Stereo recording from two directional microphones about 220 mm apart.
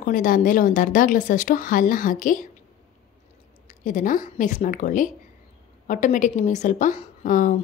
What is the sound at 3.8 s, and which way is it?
A woman's voice, 35° left (ahead or behind).